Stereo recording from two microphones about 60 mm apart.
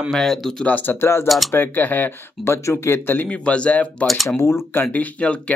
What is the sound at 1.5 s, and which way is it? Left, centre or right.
Speech, left.